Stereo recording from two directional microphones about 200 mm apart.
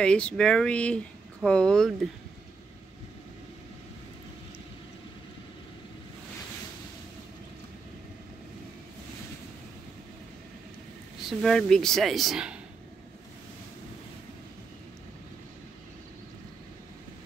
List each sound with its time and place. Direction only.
0.0 s speech: 5° left (ahead or behind)
11.2 s speech: centre (ahead or behind)